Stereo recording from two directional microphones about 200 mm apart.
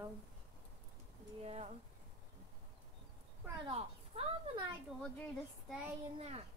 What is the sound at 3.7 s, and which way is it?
Speech, 30° right (ahead or behind).